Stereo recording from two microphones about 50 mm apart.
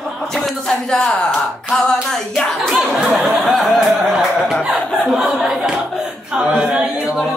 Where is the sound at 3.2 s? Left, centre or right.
Centre.